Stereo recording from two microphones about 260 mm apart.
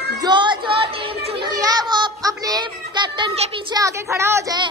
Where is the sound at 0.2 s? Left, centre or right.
Centre.